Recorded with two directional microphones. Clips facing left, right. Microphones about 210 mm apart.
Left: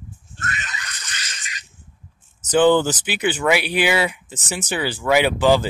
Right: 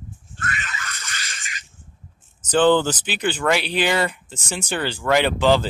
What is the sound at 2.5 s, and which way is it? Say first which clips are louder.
Speech: left 1 dB; 10° left (ahead or behind).